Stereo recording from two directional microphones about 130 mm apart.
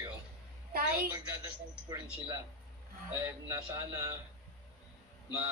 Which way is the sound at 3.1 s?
25° right (ahead or behind).